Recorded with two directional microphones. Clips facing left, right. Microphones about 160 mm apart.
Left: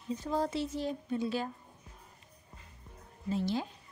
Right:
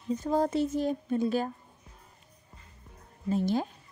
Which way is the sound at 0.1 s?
45° right (ahead or behind).